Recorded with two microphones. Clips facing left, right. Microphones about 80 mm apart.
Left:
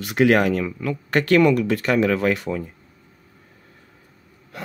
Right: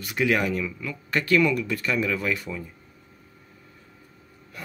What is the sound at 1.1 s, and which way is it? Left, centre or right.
Speech, left.